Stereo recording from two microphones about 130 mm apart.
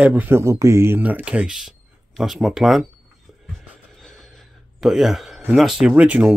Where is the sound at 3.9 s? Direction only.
5° left (ahead or behind).